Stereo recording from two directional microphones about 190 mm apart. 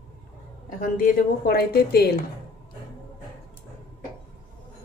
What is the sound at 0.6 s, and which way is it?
A woman's voice, 45° left (ahead or behind).